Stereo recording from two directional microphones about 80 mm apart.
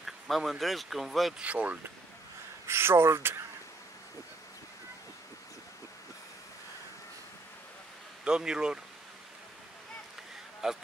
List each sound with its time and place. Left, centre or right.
0.0 s speech: centre
1.4 s speech: centre
2.6 s speech: right
8.2 s speech: centre
10.6 s speech: centre